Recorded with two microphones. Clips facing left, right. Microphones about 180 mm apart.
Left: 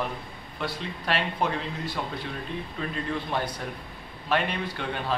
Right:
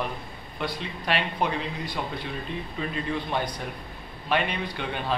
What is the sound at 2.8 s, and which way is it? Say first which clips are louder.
A man's voice: right 1 dB; 5° right (ahead or behind).